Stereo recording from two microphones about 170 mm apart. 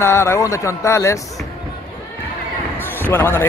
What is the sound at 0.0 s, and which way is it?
A man's voice, 15° left (ahead or behind).